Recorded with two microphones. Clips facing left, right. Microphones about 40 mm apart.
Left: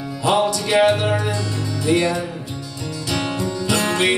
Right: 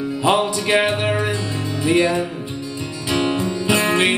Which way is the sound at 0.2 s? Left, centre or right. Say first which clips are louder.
Even; right.